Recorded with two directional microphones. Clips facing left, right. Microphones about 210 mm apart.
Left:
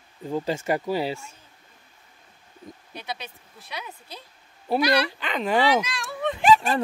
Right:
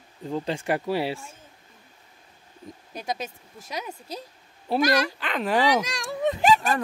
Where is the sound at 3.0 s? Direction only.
45° right (ahead or behind).